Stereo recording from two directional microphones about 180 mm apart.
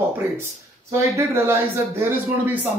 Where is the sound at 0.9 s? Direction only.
15° right (ahead or behind).